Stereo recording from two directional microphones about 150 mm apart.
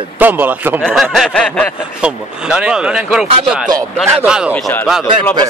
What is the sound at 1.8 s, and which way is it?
Speech, 5° right (ahead or behind).